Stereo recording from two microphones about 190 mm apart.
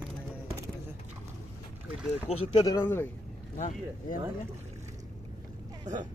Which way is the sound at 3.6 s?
45° left (ahead or behind).